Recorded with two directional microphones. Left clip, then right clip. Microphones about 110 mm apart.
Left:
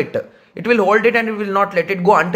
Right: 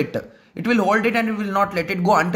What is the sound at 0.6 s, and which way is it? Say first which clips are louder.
A man's voice: left 5 dB; 15° right (ahead or behind).